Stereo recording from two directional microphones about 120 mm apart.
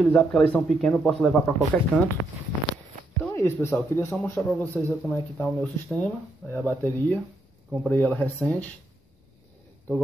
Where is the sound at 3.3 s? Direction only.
20° left (ahead or behind).